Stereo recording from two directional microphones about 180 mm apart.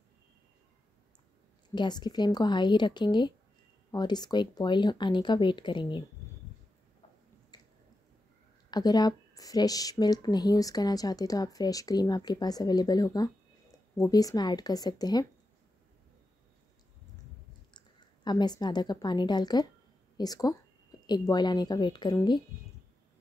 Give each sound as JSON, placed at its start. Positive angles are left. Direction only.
{"t": 1.8, "sound": "a woman's voice", "side_deg": 25}
{"t": 7.5, "sound": "squish", "side_deg": 20}
{"t": 8.6, "sound": "a woman's voice", "side_deg": 20}
{"t": 17.7, "sound": "a woman's voice", "side_deg": 25}